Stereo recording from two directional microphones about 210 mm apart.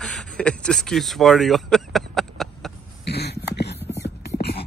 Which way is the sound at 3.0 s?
50° left (ahead or behind).